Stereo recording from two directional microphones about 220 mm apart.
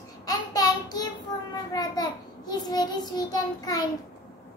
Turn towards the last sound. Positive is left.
turn(degrees=15)  # may be behind; listen again after turning